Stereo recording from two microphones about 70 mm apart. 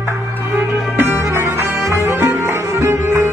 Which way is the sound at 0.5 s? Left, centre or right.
Right.